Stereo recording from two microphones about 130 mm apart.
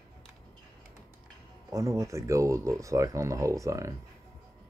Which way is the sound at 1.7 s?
25° right (ahead or behind).